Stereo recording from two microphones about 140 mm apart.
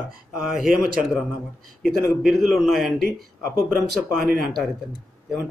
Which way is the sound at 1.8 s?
Centre (ahead or behind).